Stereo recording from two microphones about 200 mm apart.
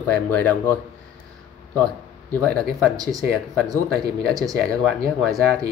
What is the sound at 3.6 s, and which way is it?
Speech, 20° right (ahead or behind).